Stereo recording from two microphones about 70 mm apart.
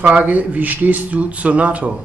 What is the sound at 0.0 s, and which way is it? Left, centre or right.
Speech, centre.